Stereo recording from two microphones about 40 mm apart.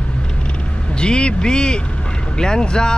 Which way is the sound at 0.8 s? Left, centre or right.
Left.